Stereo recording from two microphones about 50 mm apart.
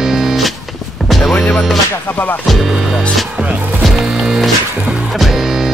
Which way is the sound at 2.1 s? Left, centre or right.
Left.